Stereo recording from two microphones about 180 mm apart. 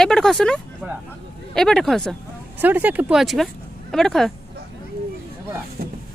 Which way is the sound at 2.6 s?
10° right (ahead or behind).